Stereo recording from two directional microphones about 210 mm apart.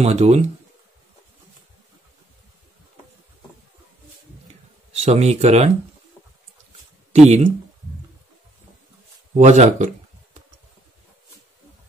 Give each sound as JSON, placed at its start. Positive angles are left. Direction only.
{"t": 0.0, "sound": "speech", "side_deg": -30}
{"t": 4.9, "sound": "speech", "side_deg": -30}
{"t": 7.1, "sound": "speech", "side_deg": -30}
{"t": 9.3, "sound": "speech", "side_deg": -35}